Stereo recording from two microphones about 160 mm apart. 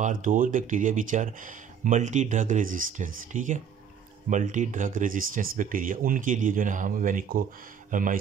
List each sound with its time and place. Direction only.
0.0 s speech: 55° right (ahead or behind)